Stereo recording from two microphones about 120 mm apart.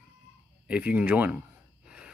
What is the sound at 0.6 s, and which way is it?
Speech, 10° right (ahead or behind).